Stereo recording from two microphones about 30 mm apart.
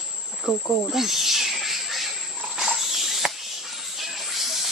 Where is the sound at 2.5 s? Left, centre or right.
Centre.